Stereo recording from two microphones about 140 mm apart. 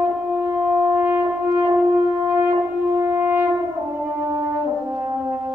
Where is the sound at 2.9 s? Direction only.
15° right (ahead or behind).